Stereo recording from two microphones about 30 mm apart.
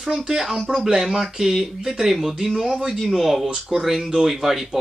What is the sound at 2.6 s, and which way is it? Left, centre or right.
Speech, right.